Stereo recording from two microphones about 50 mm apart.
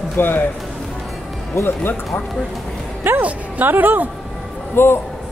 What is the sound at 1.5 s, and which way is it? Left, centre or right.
Speech, left.